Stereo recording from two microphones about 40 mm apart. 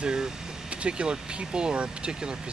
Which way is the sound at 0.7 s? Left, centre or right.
Right.